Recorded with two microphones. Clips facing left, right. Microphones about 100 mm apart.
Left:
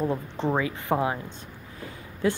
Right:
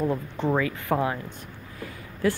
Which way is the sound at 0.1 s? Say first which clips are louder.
Right 1 dB; 20° left (ahead or behind).